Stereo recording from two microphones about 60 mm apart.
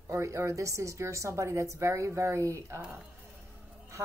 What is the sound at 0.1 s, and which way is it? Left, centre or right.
A woman's voice, right.